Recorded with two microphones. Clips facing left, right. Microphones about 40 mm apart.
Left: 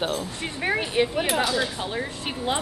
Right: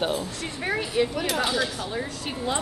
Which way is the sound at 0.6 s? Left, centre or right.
Left.